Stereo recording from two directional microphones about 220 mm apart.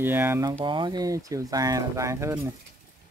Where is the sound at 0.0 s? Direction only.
10° right (ahead or behind).